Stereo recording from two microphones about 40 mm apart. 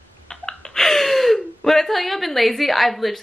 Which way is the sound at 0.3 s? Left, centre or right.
Centre.